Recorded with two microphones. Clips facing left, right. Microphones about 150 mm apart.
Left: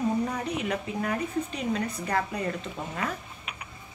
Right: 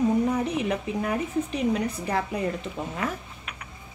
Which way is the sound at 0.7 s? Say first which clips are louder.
Right 3 dB; 15° right (ahead or behind).